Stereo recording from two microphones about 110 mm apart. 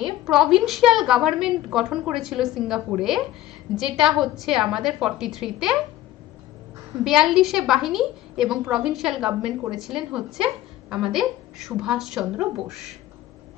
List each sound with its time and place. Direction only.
0.0 s a woman's voice: 5° right (ahead or behind)
7.1 s a woman's voice: 5° right (ahead or behind)